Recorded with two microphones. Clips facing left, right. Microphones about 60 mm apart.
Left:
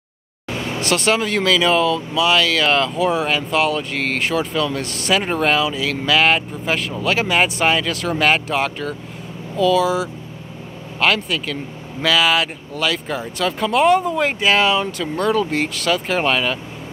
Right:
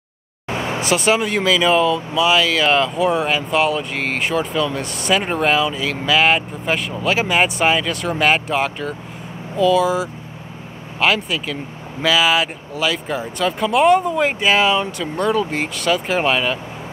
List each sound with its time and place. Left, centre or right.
0.5 s vehicle: right
0.7 s speech: centre